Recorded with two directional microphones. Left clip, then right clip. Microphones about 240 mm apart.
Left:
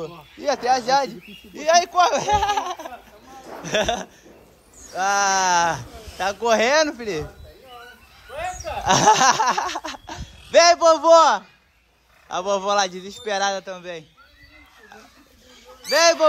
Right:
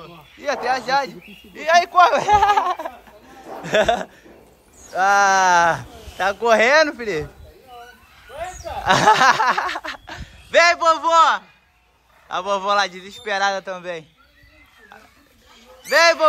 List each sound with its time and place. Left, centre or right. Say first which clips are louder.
0.7 s speech: left 1 dB; centre
3.3 s a sound: right 4 dB; centre
4.9 s speech: right 5 dB; centre
8.8 s speech: right 2 dB; centre
15.9 s speech: right 2 dB; centre